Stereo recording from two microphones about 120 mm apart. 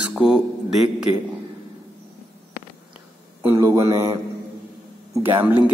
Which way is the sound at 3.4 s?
20° right (ahead or behind).